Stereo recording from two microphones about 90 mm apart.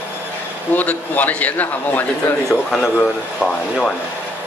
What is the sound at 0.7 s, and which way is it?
A man's voice, 20° left (ahead or behind).